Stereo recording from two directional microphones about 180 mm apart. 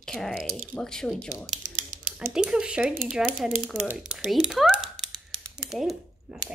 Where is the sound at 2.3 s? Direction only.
5° right (ahead or behind).